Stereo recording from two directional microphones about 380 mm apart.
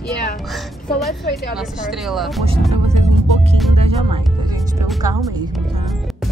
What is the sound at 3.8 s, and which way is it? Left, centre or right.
Music, centre.